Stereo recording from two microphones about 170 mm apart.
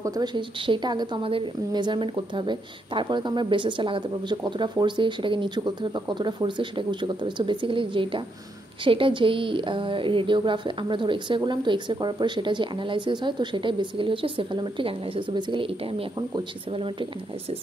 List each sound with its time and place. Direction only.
0.0 s a woman's voice: 25° right (ahead or behind)